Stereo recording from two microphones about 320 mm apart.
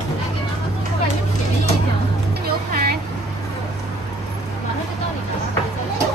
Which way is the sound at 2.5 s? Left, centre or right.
Right.